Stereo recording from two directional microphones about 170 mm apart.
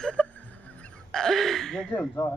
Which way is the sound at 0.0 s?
5° left (ahead or behind).